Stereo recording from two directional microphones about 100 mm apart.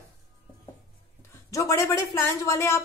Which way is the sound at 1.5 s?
30° left (ahead or behind).